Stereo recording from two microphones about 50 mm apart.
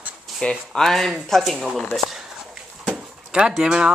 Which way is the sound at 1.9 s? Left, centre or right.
Centre.